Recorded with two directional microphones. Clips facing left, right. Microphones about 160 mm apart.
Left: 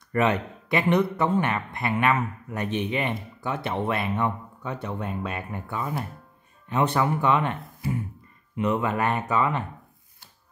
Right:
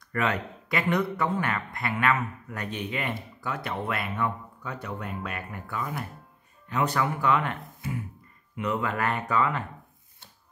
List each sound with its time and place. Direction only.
0.1 s speech: 25° left (ahead or behind)
8.5 s speech: 25° left (ahead or behind)